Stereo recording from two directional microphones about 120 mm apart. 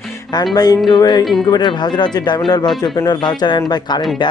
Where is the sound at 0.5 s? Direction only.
35° left (ahead or behind).